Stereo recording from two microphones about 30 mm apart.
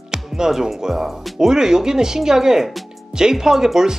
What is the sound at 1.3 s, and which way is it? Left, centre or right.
Speech, centre.